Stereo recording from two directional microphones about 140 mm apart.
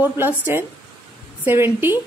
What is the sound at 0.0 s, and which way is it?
A woman's voice, 15° right (ahead or behind).